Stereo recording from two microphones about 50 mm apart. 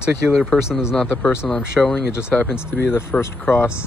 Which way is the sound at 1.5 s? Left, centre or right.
Centre.